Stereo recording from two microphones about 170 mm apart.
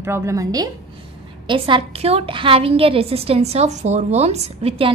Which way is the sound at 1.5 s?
30° right (ahead or behind).